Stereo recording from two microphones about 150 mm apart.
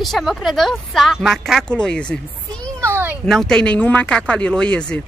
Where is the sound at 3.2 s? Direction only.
5° left (ahead or behind).